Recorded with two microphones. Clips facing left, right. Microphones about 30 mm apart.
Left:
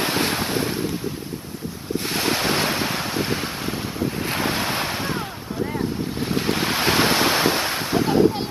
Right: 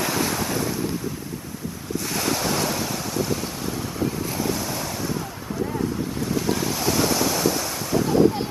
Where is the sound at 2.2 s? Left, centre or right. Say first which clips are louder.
Left 2 dB; left.